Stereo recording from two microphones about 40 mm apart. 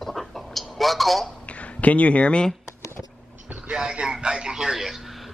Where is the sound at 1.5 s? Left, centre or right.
Left.